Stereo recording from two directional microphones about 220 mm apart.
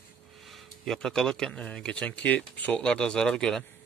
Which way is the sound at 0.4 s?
Centre (ahead or behind).